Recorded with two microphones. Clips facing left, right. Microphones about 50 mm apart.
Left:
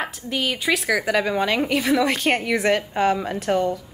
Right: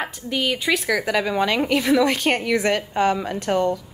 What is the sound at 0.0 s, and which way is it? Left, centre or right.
A woman's voice, centre.